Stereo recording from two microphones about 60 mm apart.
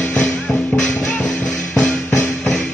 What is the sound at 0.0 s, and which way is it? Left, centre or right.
Music, left.